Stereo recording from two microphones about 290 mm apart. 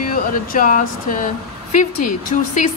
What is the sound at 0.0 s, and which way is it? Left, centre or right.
Speech, left.